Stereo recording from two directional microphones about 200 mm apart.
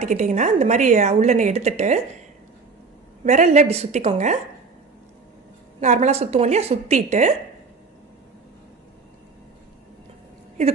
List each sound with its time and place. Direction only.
0.0 s a woman's voice: 35° right (ahead or behind)
3.3 s a woman's voice: 35° right (ahead or behind)
5.8 s a woman's voice: 35° right (ahead or behind)